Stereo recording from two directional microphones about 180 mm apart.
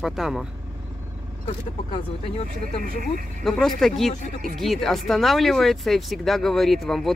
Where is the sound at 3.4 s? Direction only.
5° left (ahead or behind).